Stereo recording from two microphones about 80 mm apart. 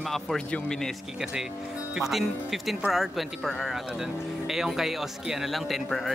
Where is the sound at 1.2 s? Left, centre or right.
Centre.